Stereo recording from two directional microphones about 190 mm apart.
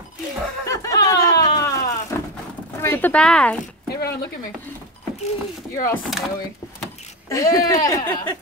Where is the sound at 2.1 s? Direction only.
15° left (ahead or behind).